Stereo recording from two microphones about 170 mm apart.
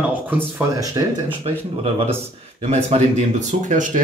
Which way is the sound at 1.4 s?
35° right (ahead or behind).